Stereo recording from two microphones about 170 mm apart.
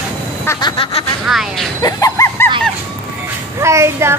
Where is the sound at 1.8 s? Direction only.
20° left (ahead or behind).